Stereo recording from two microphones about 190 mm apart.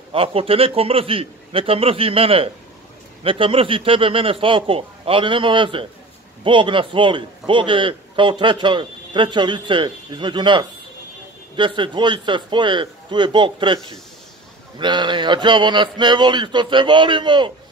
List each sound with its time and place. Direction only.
0.1 s a man's voice: 30° right (ahead or behind)
14.8 s a man's voice: 25° right (ahead or behind)